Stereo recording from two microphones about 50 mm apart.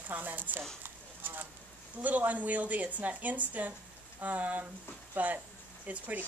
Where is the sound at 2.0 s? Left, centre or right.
Right.